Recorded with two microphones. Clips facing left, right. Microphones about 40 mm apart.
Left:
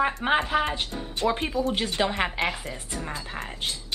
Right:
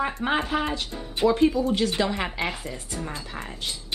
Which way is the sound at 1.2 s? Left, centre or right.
Centre.